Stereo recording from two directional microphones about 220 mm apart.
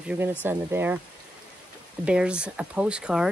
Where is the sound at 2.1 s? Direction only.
5° right (ahead or behind).